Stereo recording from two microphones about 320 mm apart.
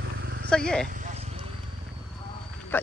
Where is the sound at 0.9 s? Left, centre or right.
Right.